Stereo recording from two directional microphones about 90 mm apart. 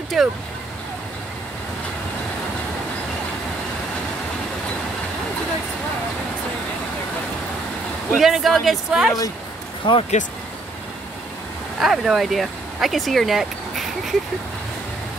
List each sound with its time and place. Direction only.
0.2 s speech: 5° right (ahead or behind)
8.1 s speech: 5° right (ahead or behind)
9.8 s speech: 65° left (ahead or behind)
11.8 s speech: centre (ahead or behind)